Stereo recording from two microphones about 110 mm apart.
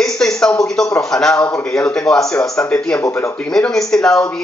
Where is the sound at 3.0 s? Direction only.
25° left (ahead or behind).